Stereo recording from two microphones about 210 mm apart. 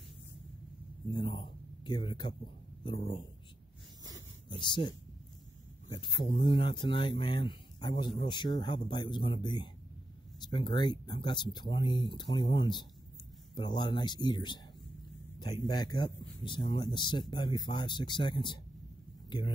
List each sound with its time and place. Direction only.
1.0 s speech: 20° left (ahead or behind)
4.5 s speech: 20° left (ahead or behind)
5.9 s speech: 20° left (ahead or behind)
15.6 s speech: 20° left (ahead or behind)
19.2 s a sound: 20° left (ahead or behind)